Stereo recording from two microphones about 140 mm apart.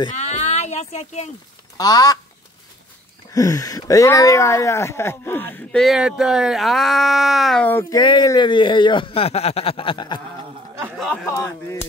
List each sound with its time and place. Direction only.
0.1 s speech: 55° left (ahead or behind)
1.8 s speech: 25° left (ahead or behind)
3.3 s speech: 25° left (ahead or behind); by 7.6 s centre (ahead or behind)
7.9 s speech: 30° left (ahead or behind)
11.2 s speech: 20° left (ahead or behind)